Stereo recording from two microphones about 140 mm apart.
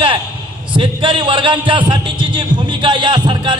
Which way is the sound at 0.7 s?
35° right (ahead or behind).